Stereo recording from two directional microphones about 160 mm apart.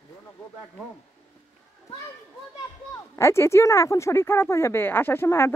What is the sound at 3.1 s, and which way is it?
Speech, 15° left (ahead or behind).